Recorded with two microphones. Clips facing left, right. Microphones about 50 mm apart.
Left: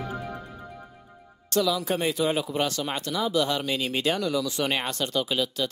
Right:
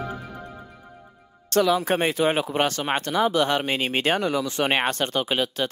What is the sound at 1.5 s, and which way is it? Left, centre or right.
Speech, right.